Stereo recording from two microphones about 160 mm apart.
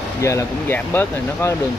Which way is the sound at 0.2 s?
20° left (ahead or behind).